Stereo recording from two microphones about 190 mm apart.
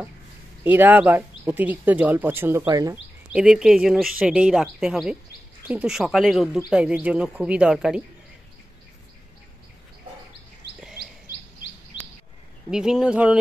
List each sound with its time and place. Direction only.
0.7 s speech: 10° right (ahead or behind)
3.3 s speech: 5° right (ahead or behind)
11.9 s chirp: 25° left (ahead or behind)
12.6 s speech: 5° right (ahead or behind)